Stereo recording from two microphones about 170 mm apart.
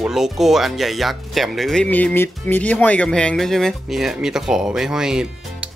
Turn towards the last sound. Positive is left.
turn(degrees=-5)  # may be behind; listen again after turning